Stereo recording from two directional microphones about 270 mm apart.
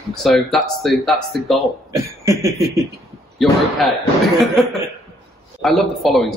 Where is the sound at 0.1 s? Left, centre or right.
Centre.